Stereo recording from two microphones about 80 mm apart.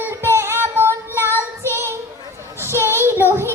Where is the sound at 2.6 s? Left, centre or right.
Right.